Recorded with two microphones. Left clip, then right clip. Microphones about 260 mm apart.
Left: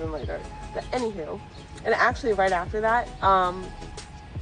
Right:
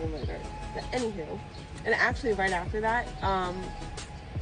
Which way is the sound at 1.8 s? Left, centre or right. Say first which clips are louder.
Left 4 dB; left.